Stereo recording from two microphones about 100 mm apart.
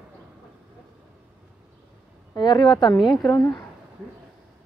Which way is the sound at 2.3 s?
50° left (ahead or behind).